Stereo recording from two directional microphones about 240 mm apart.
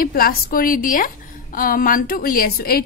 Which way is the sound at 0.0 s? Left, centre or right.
Left.